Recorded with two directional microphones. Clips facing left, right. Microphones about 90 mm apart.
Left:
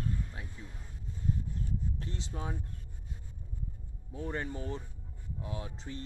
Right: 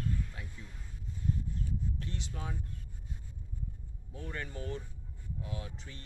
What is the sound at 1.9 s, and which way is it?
Speech, 30° left (ahead or behind).